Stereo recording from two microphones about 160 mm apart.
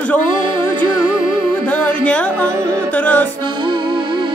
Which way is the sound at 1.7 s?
10° left (ahead or behind).